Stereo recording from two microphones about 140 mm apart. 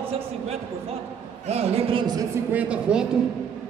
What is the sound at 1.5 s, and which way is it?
Speech, 45° right (ahead or behind).